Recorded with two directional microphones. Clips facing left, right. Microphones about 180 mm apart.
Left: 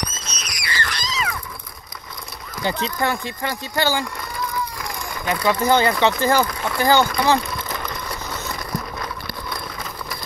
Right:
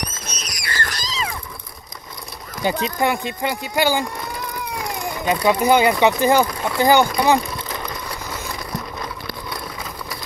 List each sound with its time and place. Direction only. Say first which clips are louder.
0.4 s a sound: even; 45° right (ahead or behind)
2.6 s speech: right 3 dB; 15° right (ahead or behind)
5.2 s speech: right 2 dB; 20° right (ahead or behind)